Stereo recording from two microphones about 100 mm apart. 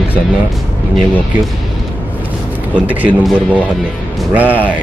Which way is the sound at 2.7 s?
15° right (ahead or behind).